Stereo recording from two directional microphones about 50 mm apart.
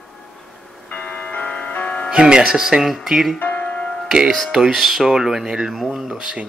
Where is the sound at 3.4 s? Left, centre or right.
Left.